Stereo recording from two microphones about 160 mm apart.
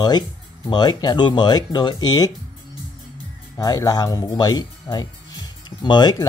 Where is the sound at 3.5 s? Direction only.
25° left (ahead or behind).